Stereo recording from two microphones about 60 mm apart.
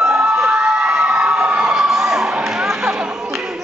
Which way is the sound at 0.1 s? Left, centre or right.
Right.